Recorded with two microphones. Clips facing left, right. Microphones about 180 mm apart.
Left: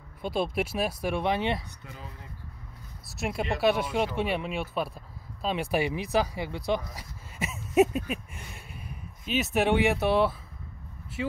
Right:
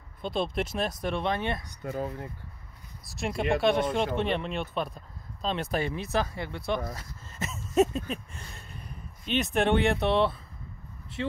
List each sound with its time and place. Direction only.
0.2 s speech: 5° left (ahead or behind)
1.9 s speech: 50° right (ahead or behind)
3.2 s speech: 5° left (ahead or behind)
7.0 s a sound: 10° left (ahead or behind)
11.2 s speech: 5° left (ahead or behind)